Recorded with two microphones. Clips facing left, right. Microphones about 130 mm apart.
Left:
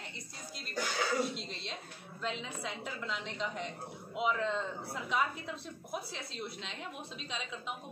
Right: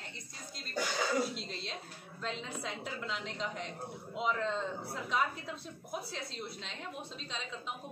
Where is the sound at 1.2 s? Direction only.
Centre (ahead or behind).